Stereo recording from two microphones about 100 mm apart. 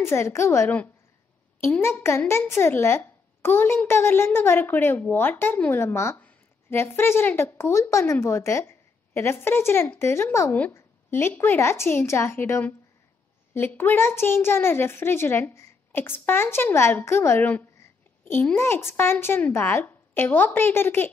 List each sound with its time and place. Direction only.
0.0 s a woman's voice: 25° left (ahead or behind)